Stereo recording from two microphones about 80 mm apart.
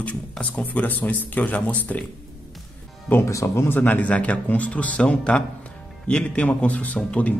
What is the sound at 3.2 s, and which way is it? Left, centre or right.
Speech, left.